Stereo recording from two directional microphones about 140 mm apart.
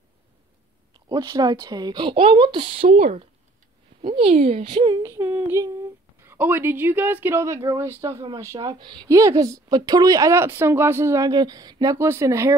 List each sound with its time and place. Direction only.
0.9 s speech: 30° right (ahead or behind)
2.9 s speech: 55° right (ahead or behind)
4.0 s speech: 40° right (ahead or behind)
4.8 s a woman's voice: 25° right (ahead or behind)